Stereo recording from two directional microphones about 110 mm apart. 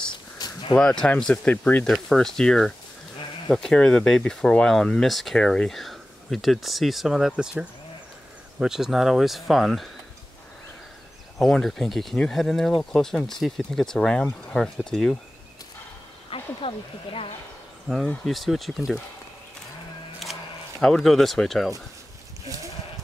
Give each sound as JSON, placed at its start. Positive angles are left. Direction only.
{"t": 0.1, "sound": "a sound", "side_deg": 40}
{"t": 0.7, "sound": "speech", "side_deg": 5}
{"t": 1.9, "sound": "speech", "side_deg": 5}
{"t": 8.5, "sound": "speech", "side_deg": -5}
{"t": 11.3, "sound": "speech", "side_deg": 5}
{"t": 16.3, "sound": "speech", "side_deg": 55}
{"t": 17.8, "sound": "speech", "side_deg": 0}
{"t": 20.2, "sound": "a sound", "side_deg": 0}
{"t": 20.8, "sound": "speech", "side_deg": 5}